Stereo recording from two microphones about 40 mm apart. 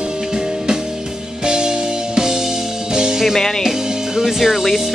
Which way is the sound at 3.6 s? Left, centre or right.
Centre.